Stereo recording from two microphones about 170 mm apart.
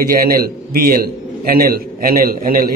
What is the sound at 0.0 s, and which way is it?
A man's voice, 60° right (ahead or behind).